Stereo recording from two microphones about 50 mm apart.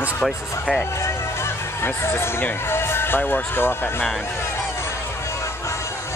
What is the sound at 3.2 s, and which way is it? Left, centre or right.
Speech, left.